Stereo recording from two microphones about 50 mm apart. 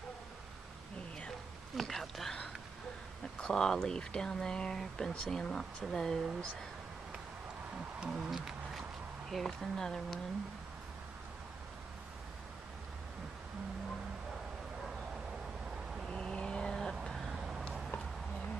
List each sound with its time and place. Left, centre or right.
1.8 s speech: centre
3.3 s speech: centre
8.0 s a sound: centre
9.3 s speech: centre
16.1 s vehicle: centre
17.0 s vehicle: centre